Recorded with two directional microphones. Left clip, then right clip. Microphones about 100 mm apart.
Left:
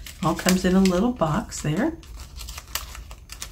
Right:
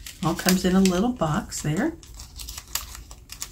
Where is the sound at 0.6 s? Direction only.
25° left (ahead or behind).